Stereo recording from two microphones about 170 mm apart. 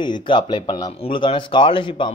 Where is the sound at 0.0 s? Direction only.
30° left (ahead or behind).